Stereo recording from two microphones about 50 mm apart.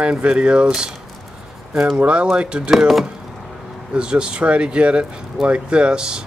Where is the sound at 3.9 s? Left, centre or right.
Centre.